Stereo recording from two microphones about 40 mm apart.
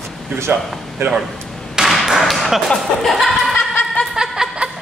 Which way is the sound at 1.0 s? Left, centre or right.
Right.